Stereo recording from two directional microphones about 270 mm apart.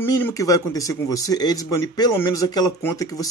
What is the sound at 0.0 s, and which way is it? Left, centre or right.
Speech, centre.